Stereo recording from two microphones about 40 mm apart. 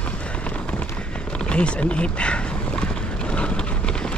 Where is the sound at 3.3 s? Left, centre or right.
Left.